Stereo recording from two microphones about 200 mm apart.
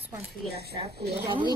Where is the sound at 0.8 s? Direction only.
30° right (ahead or behind).